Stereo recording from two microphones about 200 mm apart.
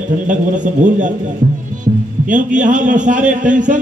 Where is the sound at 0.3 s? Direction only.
40° right (ahead or behind).